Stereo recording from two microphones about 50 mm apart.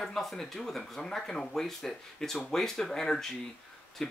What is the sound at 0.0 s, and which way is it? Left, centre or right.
Speech, centre.